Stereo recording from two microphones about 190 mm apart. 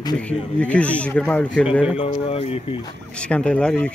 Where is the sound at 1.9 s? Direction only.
30° left (ahead or behind).